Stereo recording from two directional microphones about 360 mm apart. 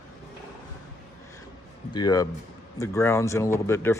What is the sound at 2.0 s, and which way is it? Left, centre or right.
Speech, centre.